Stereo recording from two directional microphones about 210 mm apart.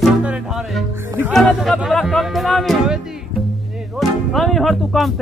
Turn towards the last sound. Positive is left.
turn(degrees=0)  # may be behind; listen again after turning